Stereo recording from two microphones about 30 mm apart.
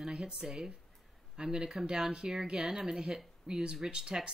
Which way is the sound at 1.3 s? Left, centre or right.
Right.